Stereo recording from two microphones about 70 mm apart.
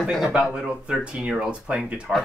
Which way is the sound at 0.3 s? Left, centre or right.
Centre.